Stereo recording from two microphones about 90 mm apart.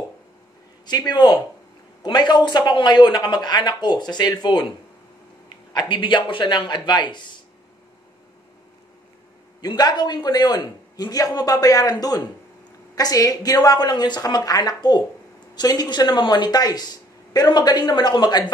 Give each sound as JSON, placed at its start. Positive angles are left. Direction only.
{"t": 0.8, "sound": "a man's voice", "side_deg": 50}
{"t": 5.7, "sound": "speech", "side_deg": 55}
{"t": 9.6, "sound": "a man's voice", "side_deg": 50}